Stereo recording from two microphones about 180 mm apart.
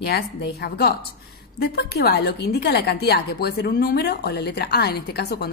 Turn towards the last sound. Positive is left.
turn(degrees=60)  # may be behind; listen again after turning